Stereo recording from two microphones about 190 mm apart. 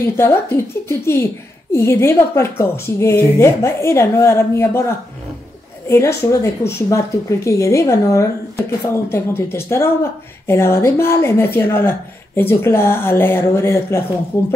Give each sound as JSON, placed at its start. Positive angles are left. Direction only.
{"t": 0.0, "sound": "a child's voice", "side_deg": 15}